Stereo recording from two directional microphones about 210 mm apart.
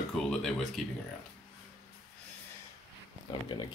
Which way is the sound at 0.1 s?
Centre (ahead or behind).